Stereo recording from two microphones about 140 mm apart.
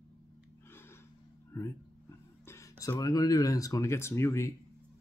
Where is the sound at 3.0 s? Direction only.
25° left (ahead or behind).